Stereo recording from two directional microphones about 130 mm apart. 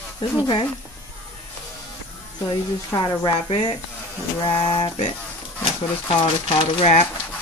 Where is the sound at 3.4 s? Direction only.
40° left (ahead or behind).